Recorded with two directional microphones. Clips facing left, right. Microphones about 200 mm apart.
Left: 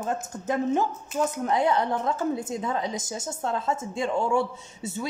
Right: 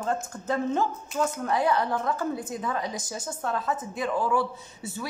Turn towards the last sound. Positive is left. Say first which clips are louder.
# left 3 dB
turn(degrees=25)  # may be behind; listen again after turning